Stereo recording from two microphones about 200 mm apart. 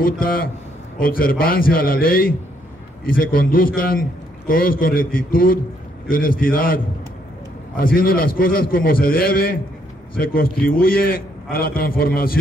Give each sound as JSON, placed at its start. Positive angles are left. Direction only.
{"t": 0.0, "sound": "a man's voice", "side_deg": 45}